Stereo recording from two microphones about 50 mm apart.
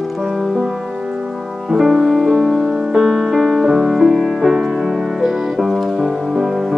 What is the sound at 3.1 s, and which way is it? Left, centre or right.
Music, centre.